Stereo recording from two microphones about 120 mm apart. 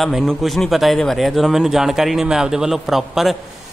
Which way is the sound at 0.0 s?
Centre (ahead or behind).